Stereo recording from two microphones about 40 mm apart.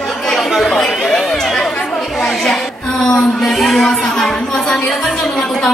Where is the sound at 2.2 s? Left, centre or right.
Centre.